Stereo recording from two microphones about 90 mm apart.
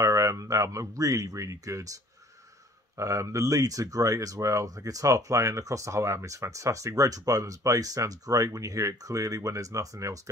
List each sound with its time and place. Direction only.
0.0 s speech: 35° right (ahead or behind)
3.0 s speech: 35° right (ahead or behind)